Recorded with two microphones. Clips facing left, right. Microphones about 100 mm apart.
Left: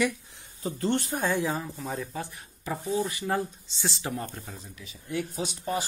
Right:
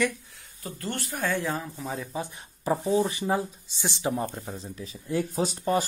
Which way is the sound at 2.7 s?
30° right (ahead or behind).